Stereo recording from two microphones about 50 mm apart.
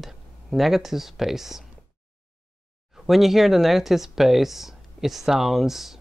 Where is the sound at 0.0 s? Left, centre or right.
Centre.